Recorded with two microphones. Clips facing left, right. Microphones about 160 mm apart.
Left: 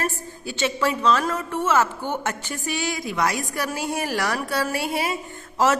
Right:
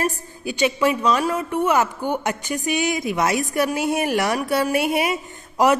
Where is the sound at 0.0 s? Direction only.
15° right (ahead or behind).